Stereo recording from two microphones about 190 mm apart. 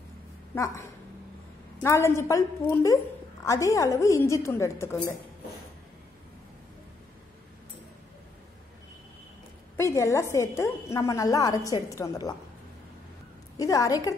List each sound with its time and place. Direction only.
0.5 s a woman's voice: 10° left (ahead or behind)
1.8 s a woman's voice: 15° left (ahead or behind)
9.8 s a woman's voice: 15° left (ahead or behind)
13.6 s a woman's voice: 20° left (ahead or behind)